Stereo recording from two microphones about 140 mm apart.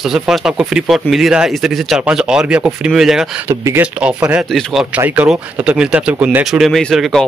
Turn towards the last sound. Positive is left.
turn(degrees=0)  # may be behind; listen again after turning